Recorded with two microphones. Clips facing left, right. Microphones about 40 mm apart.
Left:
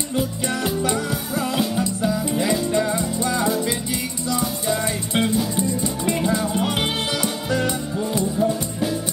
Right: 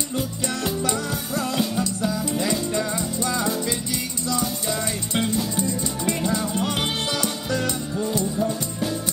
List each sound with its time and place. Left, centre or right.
0.8 s music: centre
8.4 s music: centre